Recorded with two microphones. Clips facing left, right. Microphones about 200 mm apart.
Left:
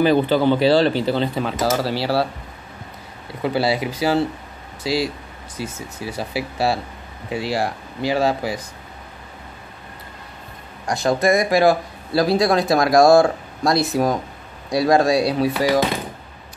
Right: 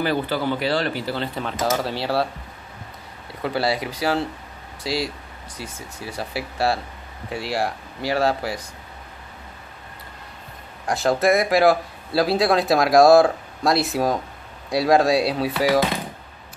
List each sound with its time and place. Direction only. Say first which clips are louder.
0.0 s speech: left 7 dB; 20° left (ahead or behind)
1.7 s speech: left 1 dB; 5° left (ahead or behind)
3.4 s speech: left 3 dB; centre (ahead or behind)
11.1 s speech: left 1 dB; 5° right (ahead or behind)